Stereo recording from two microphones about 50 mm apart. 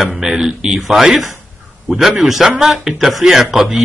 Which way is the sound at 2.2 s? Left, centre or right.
Centre.